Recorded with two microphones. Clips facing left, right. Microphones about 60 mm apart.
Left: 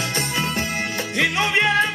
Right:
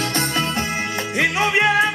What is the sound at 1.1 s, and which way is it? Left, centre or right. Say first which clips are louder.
Music: right 2 dB; right.